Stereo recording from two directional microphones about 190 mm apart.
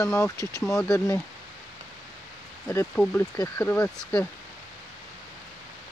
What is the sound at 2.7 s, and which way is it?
Speech, 10° left (ahead or behind).